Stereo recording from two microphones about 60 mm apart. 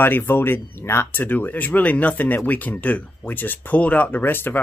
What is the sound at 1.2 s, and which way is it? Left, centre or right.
Speech, left.